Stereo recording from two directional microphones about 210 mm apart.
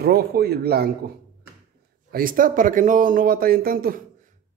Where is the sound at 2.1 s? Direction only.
40° right (ahead or behind).